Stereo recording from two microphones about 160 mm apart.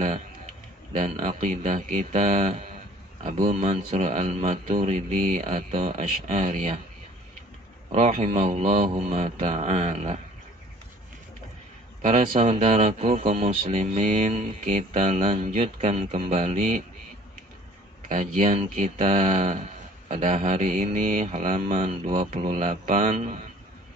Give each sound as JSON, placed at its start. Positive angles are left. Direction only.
{"t": 0.9, "sound": "speech", "side_deg": -50}
{"t": 7.9, "sound": "speech", "side_deg": -40}
{"t": 12.0, "sound": "speech", "side_deg": -50}
{"t": 18.0, "sound": "speech", "side_deg": -55}